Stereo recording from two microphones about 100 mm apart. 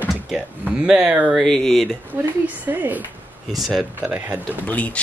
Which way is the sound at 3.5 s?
Centre (ahead or behind).